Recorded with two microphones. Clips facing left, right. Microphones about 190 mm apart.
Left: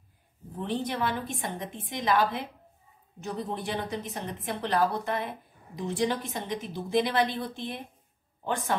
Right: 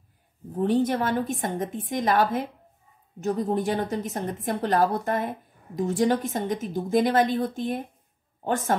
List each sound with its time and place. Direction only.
0.6 s a woman's voice: 45° right (ahead or behind)